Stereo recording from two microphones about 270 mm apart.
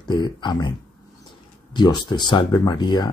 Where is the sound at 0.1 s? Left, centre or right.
Centre.